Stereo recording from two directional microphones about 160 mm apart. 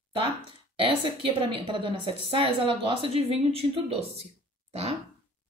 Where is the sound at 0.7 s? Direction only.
35° right (ahead or behind).